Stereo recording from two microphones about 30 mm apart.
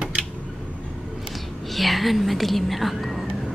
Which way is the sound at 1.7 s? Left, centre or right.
Centre.